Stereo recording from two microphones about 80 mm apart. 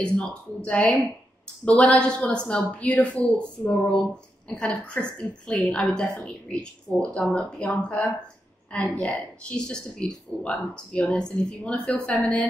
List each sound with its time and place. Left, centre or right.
0.0 s a woman's voice: centre